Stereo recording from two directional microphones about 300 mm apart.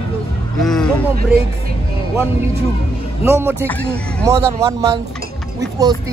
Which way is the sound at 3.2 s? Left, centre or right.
Centre.